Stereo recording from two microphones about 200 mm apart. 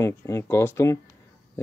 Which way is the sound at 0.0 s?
15° left (ahead or behind).